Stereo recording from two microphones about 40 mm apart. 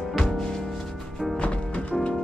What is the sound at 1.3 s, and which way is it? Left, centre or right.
Music, left.